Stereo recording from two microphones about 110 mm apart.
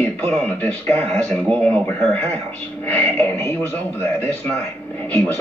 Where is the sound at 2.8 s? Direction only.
20° left (ahead or behind).